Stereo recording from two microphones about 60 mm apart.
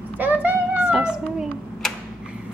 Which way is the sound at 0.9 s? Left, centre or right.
Centre.